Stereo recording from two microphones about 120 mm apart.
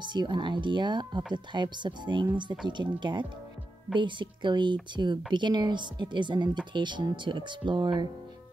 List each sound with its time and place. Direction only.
0.0 s speech: 40° right (ahead or behind)